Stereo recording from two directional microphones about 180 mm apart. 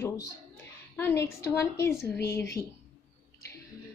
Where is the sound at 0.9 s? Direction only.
15° left (ahead or behind).